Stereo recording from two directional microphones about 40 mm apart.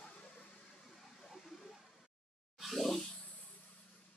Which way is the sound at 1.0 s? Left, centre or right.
Centre.